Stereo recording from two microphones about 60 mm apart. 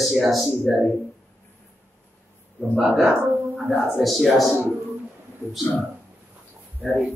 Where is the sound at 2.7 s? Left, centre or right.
Centre.